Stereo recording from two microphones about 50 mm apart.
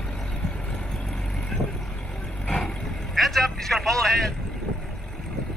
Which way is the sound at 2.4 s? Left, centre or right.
Left.